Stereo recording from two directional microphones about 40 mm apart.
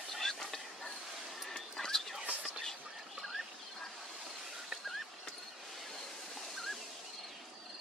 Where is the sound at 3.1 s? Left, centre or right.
Centre.